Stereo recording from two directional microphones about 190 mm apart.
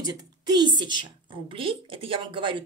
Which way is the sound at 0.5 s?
25° right (ahead or behind).